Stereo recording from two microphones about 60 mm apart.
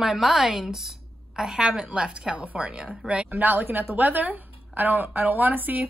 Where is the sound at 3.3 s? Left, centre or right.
Right.